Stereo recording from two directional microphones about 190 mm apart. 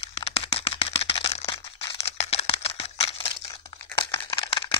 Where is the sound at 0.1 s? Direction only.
30° left (ahead or behind).